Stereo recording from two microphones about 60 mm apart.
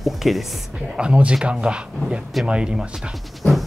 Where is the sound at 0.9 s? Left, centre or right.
Centre.